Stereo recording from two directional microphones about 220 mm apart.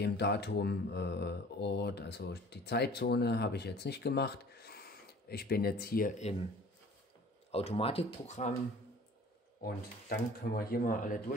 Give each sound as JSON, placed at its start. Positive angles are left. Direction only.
{"t": 0.0, "sound": "speech", "side_deg": 50}
{"t": 7.5, "sound": "speech", "side_deg": 25}
{"t": 9.6, "sound": "speech", "side_deg": 40}